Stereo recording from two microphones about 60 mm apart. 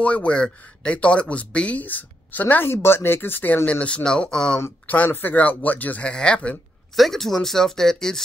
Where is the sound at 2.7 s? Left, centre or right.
Left.